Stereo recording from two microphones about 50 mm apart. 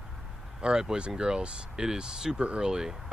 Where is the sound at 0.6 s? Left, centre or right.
Centre.